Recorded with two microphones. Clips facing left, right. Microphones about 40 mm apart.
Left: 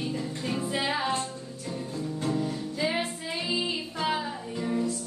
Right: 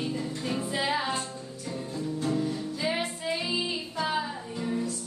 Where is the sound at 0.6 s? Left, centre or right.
Centre.